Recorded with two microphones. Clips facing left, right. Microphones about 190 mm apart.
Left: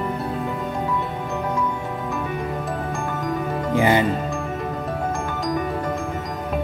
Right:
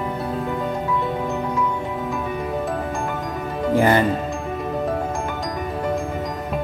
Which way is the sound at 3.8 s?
15° left (ahead or behind).